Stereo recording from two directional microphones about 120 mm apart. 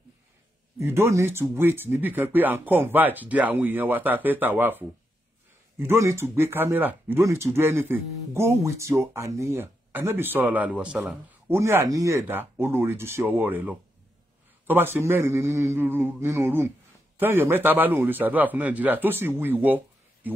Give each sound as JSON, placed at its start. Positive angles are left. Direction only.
{"t": 0.7, "sound": "speech", "side_deg": -20}